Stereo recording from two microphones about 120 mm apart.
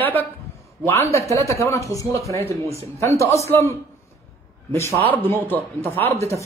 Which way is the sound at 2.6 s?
55° right (ahead or behind).